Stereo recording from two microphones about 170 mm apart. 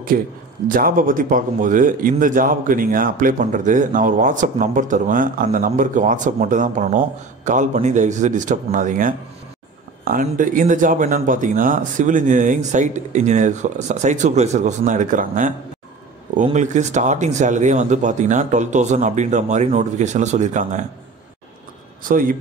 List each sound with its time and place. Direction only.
0.7 s speech: 55° right (ahead or behind)
16.5 s speech: 45° right (ahead or behind)
22.0 s speech: 55° right (ahead or behind)